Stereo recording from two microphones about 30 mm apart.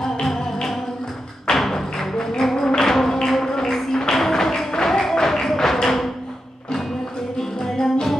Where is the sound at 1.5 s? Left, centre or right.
Centre.